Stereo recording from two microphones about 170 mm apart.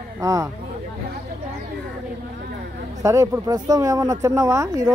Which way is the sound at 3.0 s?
20° right (ahead or behind).